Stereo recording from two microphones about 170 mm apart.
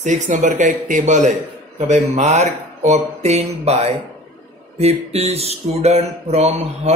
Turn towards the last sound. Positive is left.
turn(degrees=-40)  # may be behind; listen again after turning